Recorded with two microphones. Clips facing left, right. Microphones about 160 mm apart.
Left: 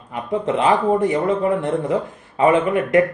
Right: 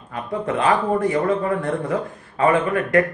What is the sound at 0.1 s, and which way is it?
A man's voice, 20° left (ahead or behind).